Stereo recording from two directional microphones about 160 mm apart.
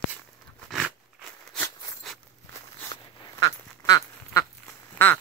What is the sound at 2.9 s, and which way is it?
Duck, 25° left (ahead or behind).